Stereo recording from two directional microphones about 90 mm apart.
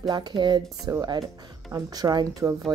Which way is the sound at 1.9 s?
45° right (ahead or behind).